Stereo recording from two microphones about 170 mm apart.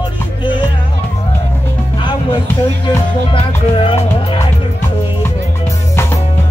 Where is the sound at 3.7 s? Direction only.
35° left (ahead or behind).